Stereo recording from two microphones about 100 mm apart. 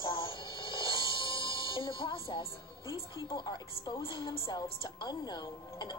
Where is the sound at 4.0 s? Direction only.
60° left (ahead or behind).